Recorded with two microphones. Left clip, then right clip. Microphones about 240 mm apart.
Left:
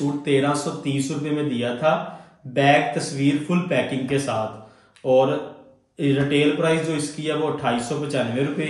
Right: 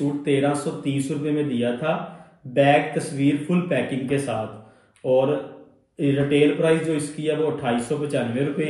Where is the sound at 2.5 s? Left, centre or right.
Centre.